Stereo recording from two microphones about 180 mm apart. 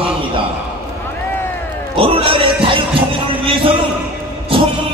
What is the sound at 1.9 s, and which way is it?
Speech, 30° right (ahead or behind).